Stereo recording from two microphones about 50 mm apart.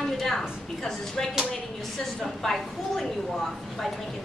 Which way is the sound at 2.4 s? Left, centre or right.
Centre.